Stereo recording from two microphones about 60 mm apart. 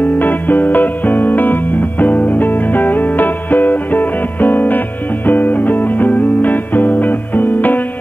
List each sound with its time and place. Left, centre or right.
0.0 s music: left